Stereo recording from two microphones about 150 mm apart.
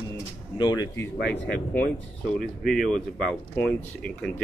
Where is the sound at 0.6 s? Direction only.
25° left (ahead or behind).